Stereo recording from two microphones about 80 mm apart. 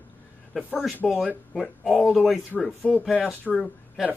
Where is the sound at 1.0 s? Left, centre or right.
Centre.